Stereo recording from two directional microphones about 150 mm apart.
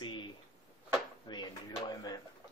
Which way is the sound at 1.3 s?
30° left (ahead or behind).